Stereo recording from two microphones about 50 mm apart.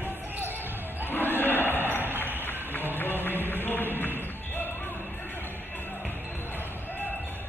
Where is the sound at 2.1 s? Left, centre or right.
Right.